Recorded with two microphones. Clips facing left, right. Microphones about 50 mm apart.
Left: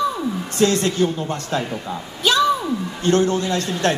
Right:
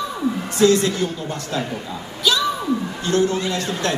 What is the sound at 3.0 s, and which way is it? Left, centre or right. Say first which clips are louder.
Speech: left 4 dB; left.